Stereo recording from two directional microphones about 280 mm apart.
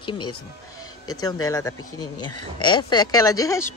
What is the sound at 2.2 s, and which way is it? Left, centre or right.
Speech, left.